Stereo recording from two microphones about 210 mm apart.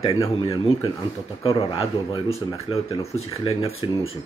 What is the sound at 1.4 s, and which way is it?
Speech, 25° left (ahead or behind).